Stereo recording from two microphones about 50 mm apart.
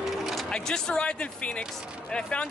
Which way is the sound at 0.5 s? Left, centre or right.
Centre.